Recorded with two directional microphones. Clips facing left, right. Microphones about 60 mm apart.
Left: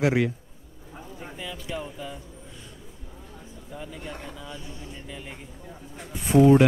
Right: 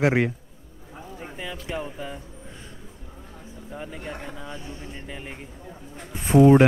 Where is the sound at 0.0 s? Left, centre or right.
Right.